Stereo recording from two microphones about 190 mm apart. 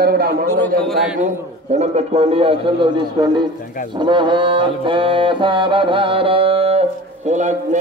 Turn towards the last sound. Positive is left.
turn(degrees=-40)  # may be behind; listen again after turning